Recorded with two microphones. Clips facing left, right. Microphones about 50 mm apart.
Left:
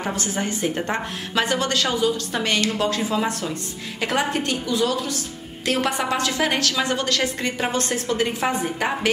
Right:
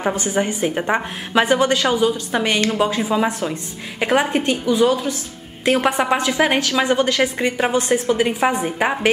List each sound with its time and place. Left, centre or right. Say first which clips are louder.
0.0 s a woman's voice: right 6 dB; centre